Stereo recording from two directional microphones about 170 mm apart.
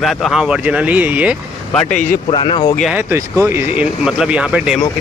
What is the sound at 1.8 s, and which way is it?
Speech, 50° left (ahead or behind).